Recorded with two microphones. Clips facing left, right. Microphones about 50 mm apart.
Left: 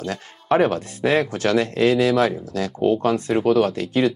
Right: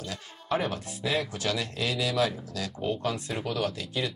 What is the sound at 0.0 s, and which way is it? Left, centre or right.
Speech, left.